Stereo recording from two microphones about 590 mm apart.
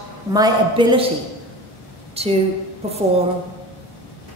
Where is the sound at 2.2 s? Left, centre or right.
Centre.